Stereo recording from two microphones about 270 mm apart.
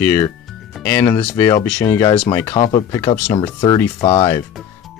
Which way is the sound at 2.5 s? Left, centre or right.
Left.